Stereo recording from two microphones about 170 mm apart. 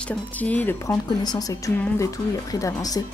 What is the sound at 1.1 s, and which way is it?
A woman's voice, 25° left (ahead or behind).